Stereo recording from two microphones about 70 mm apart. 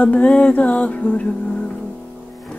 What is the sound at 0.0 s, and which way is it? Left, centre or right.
Humming, centre.